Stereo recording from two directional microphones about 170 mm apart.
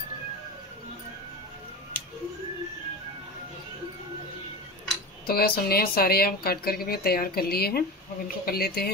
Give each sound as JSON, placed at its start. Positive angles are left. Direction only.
{"t": 5.2, "sound": "speech", "side_deg": 60}